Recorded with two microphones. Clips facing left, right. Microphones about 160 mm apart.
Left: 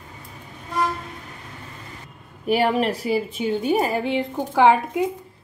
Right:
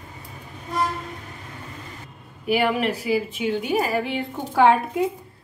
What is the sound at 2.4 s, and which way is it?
A woman's voice, 35° left (ahead or behind).